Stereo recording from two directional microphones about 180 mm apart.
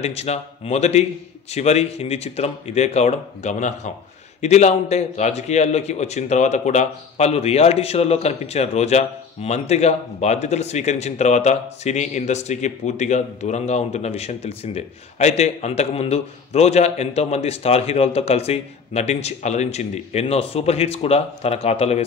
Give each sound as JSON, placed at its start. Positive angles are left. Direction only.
{"t": 0.0, "sound": "a man's voice", "side_deg": 35}